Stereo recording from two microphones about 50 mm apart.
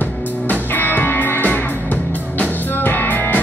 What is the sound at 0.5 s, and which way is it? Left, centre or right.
Music, left.